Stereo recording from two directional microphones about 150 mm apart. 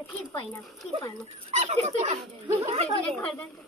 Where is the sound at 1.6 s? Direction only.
50° right (ahead or behind).